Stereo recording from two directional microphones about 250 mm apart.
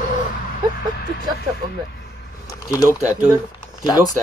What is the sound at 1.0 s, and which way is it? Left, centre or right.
Speech, left.